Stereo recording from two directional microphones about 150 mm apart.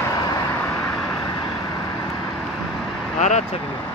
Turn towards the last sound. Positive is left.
turn(degrees=50)  # may be behind; listen again after turning